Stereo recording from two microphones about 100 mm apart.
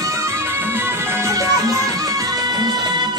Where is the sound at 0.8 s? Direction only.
25° right (ahead or behind); by 3.1 s 45° right (ahead or behind).